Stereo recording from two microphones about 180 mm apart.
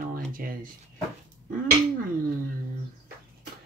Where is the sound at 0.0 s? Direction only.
55° right (ahead or behind).